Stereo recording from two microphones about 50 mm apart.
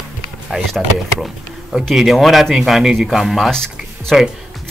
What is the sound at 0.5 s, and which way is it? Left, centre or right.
Speech, centre.